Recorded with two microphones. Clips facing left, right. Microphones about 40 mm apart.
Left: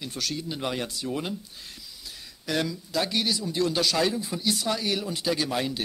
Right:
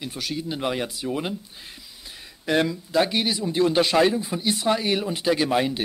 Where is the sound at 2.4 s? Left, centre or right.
Right.